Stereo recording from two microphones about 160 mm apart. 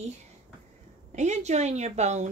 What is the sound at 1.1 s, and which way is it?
Speech, 45° right (ahead or behind).